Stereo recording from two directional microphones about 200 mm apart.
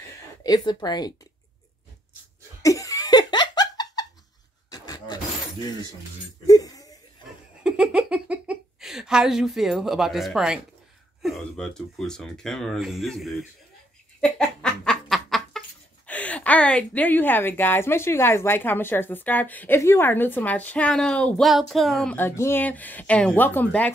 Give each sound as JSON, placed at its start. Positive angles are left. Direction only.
{"t": 0.4, "sound": "speech", "side_deg": 20}
{"t": 2.6, "sound": "laughter", "side_deg": 15}
{"t": 4.6, "sound": "beatboxing", "side_deg": 20}
{"t": 6.4, "sound": "a sound", "side_deg": 20}
{"t": 7.6, "sound": "speech", "side_deg": -5}
{"t": 14.4, "sound": "snicker", "side_deg": 0}
{"t": 16.1, "sound": "a woman's voice", "side_deg": 5}